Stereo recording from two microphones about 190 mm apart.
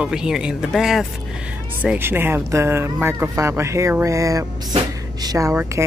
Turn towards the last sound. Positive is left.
turn(degrees=-15)  # may be behind; listen again after turning